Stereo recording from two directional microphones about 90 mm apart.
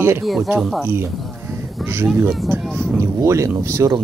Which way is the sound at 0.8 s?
25° right (ahead or behind).